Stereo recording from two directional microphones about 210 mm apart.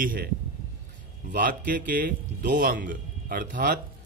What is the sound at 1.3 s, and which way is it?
Speech, 40° right (ahead or behind).